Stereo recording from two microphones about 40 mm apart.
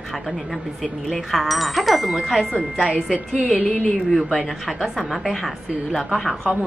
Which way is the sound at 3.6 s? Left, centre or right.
Left.